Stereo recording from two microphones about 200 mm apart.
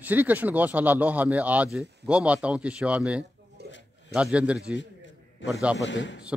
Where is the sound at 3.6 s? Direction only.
55° right (ahead or behind).